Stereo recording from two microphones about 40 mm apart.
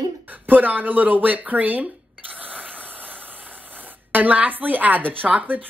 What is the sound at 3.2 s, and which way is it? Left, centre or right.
Speech, right.